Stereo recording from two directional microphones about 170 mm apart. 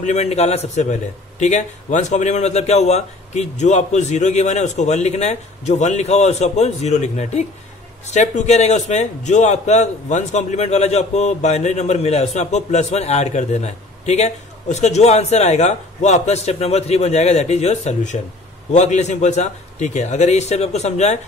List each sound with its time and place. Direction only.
0.0 s a man's voice: 45° left (ahead or behind)